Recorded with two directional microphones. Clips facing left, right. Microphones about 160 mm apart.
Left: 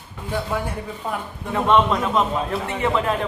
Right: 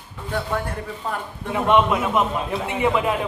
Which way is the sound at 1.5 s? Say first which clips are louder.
Even; 10° right (ahead or behind).